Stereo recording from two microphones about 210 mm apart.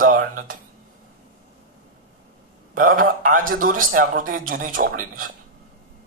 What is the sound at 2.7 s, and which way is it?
Speech, 40° right (ahead or behind).